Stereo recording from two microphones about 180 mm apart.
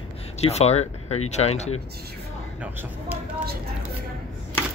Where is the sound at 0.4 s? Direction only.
35° left (ahead or behind).